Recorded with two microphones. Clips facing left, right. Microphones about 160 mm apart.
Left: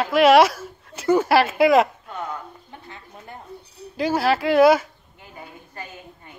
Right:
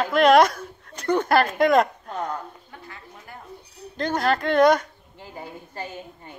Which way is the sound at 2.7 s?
25° left (ahead or behind).